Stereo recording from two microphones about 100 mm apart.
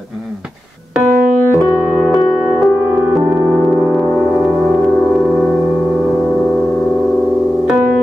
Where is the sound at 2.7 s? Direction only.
20° right (ahead or behind).